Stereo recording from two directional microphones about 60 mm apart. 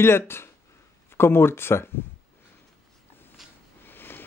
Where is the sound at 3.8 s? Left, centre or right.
Left.